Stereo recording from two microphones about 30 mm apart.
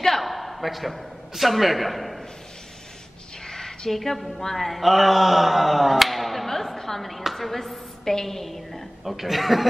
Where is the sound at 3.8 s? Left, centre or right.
Centre.